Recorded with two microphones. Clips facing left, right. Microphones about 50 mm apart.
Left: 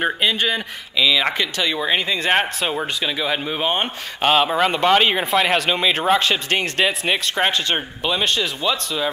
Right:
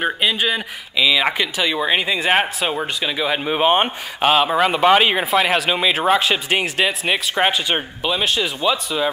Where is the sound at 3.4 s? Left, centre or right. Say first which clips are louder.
Right 5 dB; centre.